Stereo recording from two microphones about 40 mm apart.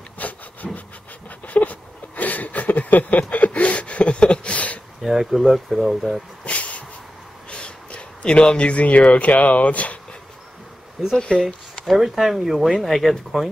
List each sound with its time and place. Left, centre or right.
0.2 s wood: left
0.6 s wood: centre
1.5 s a sound: left
5.0 s speech: centre
6.4 s a sound: left
7.4 s speech: left
11.1 s speech: centre
11.9 s speech: centre